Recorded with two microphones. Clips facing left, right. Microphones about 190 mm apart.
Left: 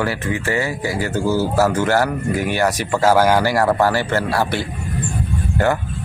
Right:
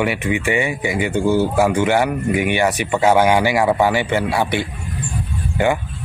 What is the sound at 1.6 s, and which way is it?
Speech, 10° right (ahead or behind).